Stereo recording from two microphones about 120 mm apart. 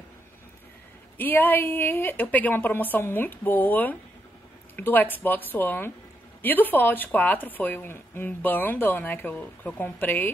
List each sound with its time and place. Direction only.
1.1 s speech: 15° left (ahead or behind)